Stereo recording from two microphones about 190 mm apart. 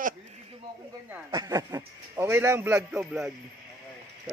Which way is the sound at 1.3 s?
20° right (ahead or behind).